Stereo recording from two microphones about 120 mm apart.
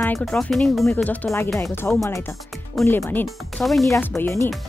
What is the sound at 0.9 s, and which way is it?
Speech, 15° left (ahead or behind).